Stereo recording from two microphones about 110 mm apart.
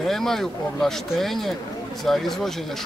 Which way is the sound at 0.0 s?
5° left (ahead or behind).